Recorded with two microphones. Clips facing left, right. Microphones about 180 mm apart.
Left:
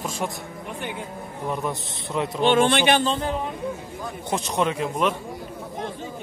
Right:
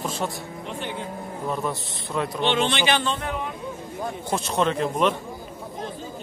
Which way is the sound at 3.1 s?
35° left (ahead or behind).